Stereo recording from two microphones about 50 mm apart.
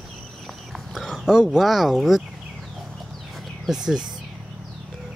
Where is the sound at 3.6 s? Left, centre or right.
Centre.